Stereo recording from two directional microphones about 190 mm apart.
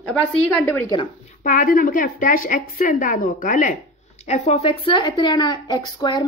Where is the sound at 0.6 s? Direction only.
15° left (ahead or behind).